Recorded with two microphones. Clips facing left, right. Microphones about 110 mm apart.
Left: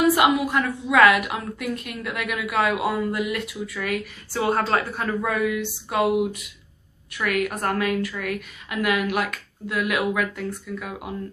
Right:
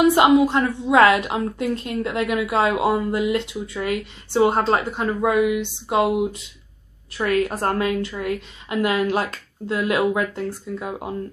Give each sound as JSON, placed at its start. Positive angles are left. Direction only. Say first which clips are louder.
{"t": 0.0, "sound": "a woman's voice", "louder": "right 4 dB", "side_deg": -25}